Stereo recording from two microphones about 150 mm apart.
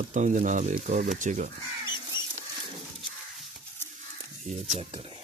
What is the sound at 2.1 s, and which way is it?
Rodents, 30° left (ahead or behind).